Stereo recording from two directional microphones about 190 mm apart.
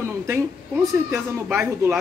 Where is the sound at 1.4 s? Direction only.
5° right (ahead or behind).